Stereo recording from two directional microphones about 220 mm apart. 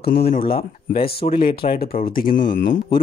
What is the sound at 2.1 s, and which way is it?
Speech, 40° left (ahead or behind).